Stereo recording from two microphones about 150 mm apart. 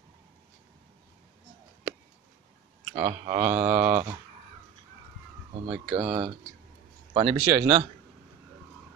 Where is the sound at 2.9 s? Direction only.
20° right (ahead or behind).